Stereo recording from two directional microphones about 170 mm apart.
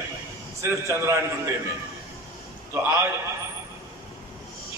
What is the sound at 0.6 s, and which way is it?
Speech, 15° right (ahead or behind).